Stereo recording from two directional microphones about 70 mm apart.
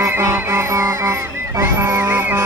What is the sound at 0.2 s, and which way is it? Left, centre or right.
Music, right.